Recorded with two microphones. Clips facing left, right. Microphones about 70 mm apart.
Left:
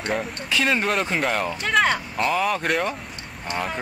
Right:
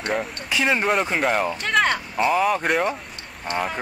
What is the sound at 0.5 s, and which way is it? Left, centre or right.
Speech, centre.